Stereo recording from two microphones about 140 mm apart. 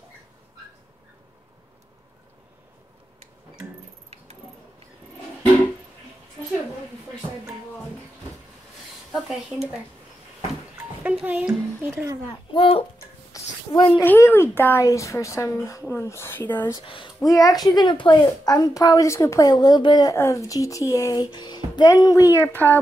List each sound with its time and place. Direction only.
9.1 s speech: 5° right (ahead or behind)
11.1 s speech: 10° right (ahead or behind)
12.5 s speech: 40° left (ahead or behind)
13.3 s a sound: 25° left (ahead or behind)
14.0 s a woman's voice: 15° left (ahead or behind)
16.8 s speech: 40° left (ahead or behind)
17.2 s a woman's voice: 25° left (ahead or behind)